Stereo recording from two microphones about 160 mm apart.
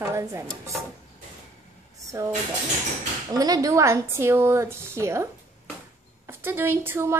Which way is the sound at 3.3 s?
25° right (ahead or behind).